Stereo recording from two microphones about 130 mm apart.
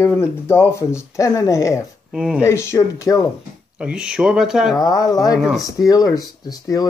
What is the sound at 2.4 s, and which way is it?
Speech, 20° left (ahead or behind).